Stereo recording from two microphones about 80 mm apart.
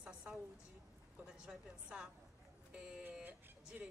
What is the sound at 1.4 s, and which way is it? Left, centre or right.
Speech, centre.